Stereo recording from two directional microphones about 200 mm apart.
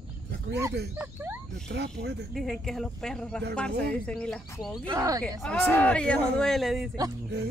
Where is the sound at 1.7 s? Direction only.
55° right (ahead or behind).